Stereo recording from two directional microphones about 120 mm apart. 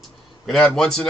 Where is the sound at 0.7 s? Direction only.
5° left (ahead or behind).